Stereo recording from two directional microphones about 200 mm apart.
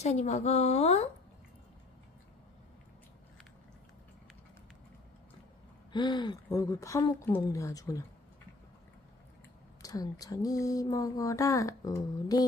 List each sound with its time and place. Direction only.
0.0 s a woman's voice: 35° left (ahead or behind)
5.9 s speech: 20° left (ahead or behind)
9.8 s speech: 15° left (ahead or behind)